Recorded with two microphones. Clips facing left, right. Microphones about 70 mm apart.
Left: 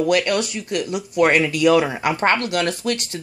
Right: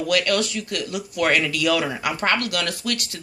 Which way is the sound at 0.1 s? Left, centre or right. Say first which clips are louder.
Left 2 dB; left.